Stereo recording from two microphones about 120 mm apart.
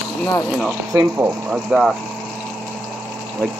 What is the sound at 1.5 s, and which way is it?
Speech, centre (ahead or behind).